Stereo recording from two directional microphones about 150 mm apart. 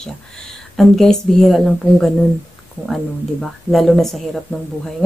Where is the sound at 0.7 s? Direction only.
Centre (ahead or behind).